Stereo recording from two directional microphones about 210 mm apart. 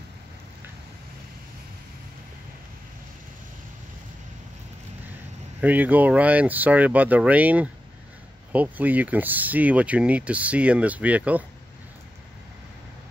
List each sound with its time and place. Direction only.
5.6 s speech: 10° right (ahead or behind)